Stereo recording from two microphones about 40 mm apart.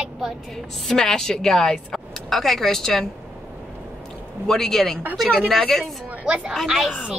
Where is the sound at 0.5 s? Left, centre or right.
Centre.